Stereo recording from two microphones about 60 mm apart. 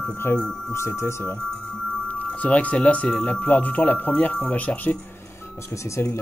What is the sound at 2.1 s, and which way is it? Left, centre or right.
Speech, left.